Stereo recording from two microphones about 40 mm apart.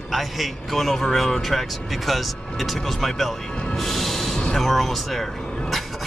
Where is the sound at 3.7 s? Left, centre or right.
Centre.